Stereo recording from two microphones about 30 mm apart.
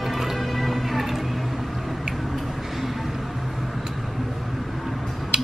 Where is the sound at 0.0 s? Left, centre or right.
Centre.